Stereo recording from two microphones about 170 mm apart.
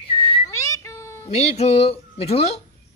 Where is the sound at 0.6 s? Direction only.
15° left (ahead or behind).